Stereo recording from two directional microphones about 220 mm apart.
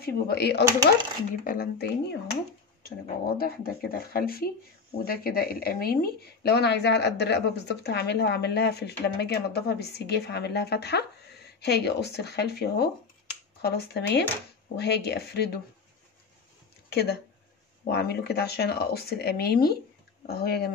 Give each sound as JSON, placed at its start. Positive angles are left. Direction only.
{"t": 0.0, "sound": "speech", "side_deg": 45}
{"t": 3.3, "sound": "speech", "side_deg": 45}
{"t": 16.9, "sound": "speech", "side_deg": 45}